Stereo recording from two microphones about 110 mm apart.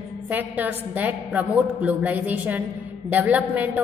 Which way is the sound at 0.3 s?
15° right (ahead or behind).